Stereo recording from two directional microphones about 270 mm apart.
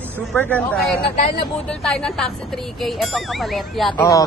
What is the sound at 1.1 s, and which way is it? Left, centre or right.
Speech, left.